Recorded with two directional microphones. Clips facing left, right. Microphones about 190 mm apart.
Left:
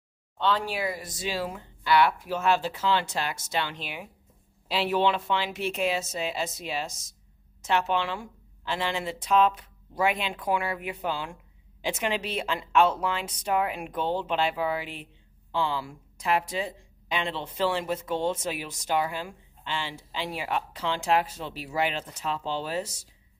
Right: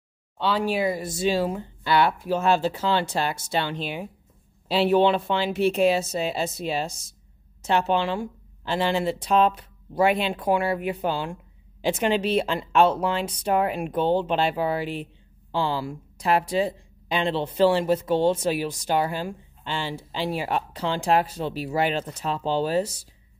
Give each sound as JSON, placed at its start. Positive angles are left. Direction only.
{"t": 0.4, "sound": "speech", "side_deg": -10}